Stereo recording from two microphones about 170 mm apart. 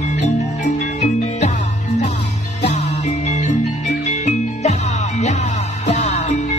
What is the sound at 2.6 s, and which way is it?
Music, 45° left (ahead or behind).